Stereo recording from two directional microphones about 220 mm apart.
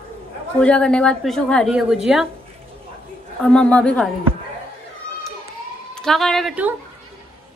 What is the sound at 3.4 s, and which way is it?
Speech, 5° left (ahead or behind).